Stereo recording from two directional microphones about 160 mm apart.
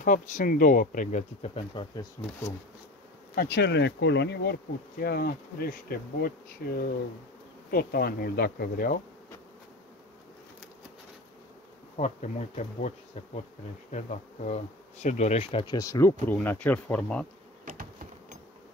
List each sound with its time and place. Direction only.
0.0 s speech: 55° left (ahead or behind); by 1.9 s 40° left (ahead or behind)
2.2 s speech: 25° left (ahead or behind)
3.3 s bee: 70° left (ahead or behind)
12.0 s bee: 45° left (ahead or behind)
13.9 s speech: 45° left (ahead or behind); by 17.3 s 5° left (ahead or behind)